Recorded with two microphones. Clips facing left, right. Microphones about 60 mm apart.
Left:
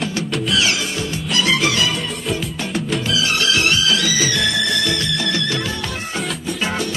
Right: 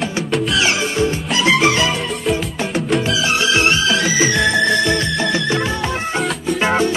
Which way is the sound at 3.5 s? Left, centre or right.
Right.